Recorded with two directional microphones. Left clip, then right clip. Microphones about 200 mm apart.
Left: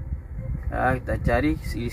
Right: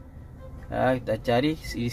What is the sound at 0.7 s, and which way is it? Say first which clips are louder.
Speech: even; 45° right (ahead or behind).